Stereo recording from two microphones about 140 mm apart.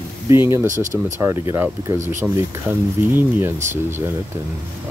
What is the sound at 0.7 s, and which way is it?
Speech, 65° right (ahead or behind).